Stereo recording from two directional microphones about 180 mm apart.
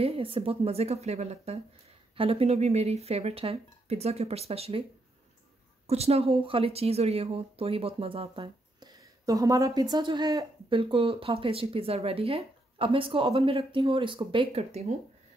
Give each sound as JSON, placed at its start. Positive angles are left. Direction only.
{"t": 0.0, "sound": "speech", "side_deg": -30}
{"t": 5.9, "sound": "speech", "side_deg": -35}